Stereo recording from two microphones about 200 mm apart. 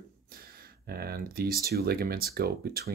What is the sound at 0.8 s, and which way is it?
Speech, 50° right (ahead or behind).